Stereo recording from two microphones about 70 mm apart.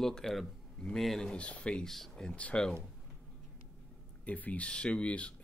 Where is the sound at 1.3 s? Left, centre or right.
Centre.